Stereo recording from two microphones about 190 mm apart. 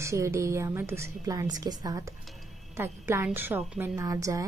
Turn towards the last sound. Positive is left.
turn(degrees=-15)  # may be behind; listen again after turning